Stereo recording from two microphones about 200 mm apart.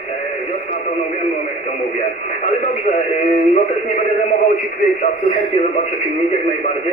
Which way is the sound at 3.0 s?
35° left (ahead or behind).